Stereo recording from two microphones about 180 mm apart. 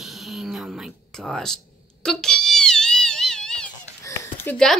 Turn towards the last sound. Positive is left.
turn(degrees=5)  # may be behind; listen again after turning